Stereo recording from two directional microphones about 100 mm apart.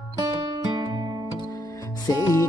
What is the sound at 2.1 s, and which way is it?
Music, 40° left (ahead or behind).